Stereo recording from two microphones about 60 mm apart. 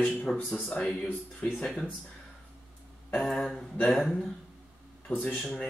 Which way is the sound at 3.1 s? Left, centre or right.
Centre.